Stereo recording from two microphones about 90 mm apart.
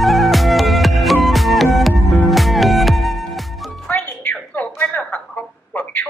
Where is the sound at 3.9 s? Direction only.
20° left (ahead or behind).